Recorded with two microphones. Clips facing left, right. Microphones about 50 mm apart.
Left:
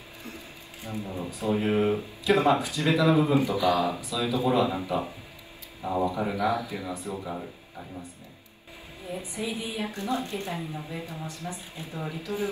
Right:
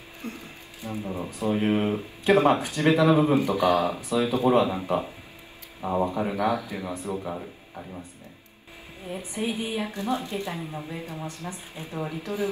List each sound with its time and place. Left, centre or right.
0.8 s speech: right
1.3 s speech: right
5.8 s speech: right
9.0 s speech: right